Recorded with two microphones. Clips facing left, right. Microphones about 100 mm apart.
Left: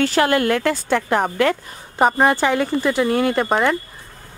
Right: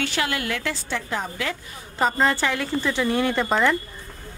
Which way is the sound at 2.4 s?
25° left (ahead or behind).